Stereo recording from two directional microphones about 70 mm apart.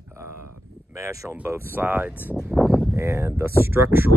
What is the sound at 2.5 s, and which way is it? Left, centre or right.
Speech, centre.